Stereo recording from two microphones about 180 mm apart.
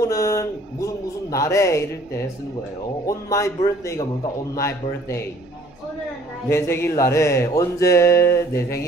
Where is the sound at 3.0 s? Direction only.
20° left (ahead or behind).